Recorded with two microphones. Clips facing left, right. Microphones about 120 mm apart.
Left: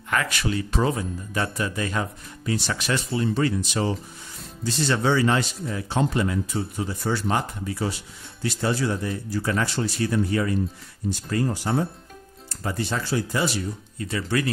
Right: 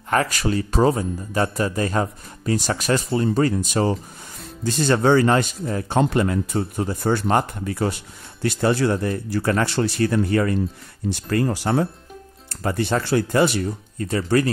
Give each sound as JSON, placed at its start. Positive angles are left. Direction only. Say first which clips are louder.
{"t": 0.1, "sound": "speech", "louder": "right 5 dB", "side_deg": -35}
{"t": 12.4, "sound": "speech", "louder": "right 5 dB", "side_deg": -60}